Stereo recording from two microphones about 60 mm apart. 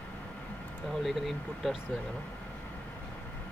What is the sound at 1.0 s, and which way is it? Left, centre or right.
Speech, centre.